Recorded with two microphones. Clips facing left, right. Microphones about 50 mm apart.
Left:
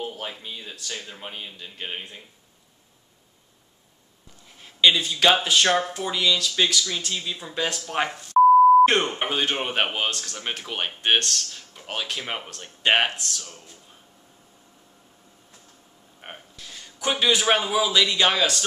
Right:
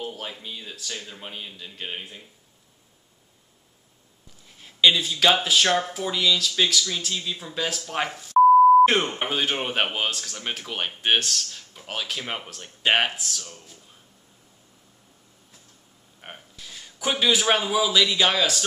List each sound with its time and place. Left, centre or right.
0.0 s speech: centre
4.6 s speech: centre
16.2 s a sound: centre
16.5 s a man's voice: centre